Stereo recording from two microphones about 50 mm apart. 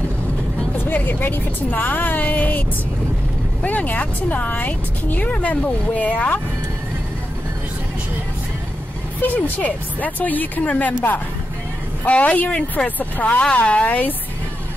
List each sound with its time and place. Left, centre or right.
0.7 s speech: left
3.6 s speech: left
9.2 s speech: left